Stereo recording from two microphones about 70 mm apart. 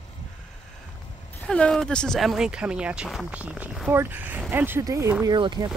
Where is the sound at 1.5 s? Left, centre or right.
Centre.